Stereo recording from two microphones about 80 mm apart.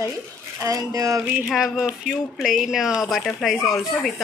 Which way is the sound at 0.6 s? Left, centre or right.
Right.